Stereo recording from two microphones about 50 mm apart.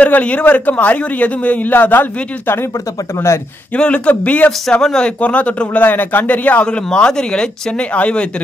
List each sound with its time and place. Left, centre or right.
0.0 s a man's voice: left
3.7 s speech: left
4.8 s speech: centre
5.2 s a man's voice: left
6.6 s speech: centre